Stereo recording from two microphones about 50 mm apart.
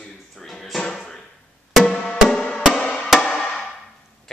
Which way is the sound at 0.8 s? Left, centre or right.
Centre.